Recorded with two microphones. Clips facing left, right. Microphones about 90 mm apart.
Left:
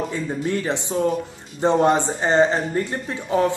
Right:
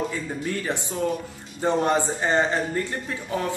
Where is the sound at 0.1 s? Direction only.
25° left (ahead or behind).